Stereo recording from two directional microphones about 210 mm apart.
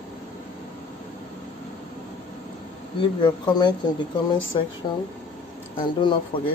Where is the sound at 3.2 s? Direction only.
20° left (ahead or behind).